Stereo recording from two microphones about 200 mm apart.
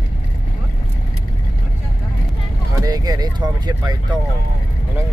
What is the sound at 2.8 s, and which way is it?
Speech, 20° right (ahead or behind).